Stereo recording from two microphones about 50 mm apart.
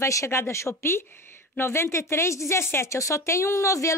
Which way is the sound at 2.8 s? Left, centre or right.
Left.